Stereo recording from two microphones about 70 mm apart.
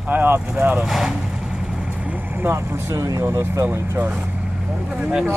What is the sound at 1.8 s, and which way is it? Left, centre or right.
Vehicle, right.